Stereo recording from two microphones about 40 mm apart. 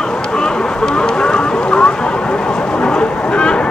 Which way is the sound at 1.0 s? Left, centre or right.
Left.